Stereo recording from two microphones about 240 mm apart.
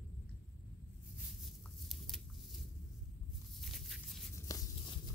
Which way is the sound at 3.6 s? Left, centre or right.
Centre.